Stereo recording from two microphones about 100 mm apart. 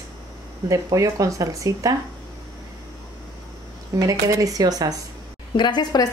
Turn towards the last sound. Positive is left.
turn(degrees=45)  # may be behind; listen again after turning